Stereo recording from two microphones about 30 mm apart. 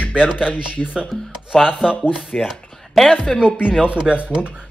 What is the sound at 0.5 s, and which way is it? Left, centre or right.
Speech, left.